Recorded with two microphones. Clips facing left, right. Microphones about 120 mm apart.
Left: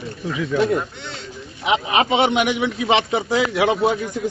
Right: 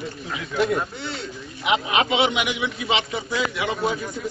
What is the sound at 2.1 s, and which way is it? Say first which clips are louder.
A man's voice: left 4 dB; 45° left (ahead or behind).